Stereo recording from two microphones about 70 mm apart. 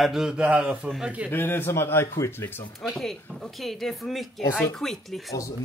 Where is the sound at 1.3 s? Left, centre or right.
Left.